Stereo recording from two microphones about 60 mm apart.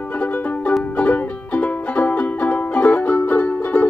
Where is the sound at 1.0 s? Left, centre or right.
Left.